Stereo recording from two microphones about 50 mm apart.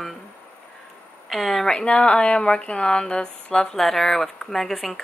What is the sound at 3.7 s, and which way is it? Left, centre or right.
Speech, centre.